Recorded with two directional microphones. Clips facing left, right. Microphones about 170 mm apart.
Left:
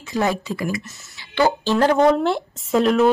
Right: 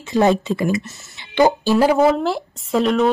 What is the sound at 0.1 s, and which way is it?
Speech, 25° right (ahead or behind).